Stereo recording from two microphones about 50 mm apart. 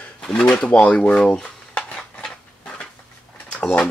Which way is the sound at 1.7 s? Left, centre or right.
Centre.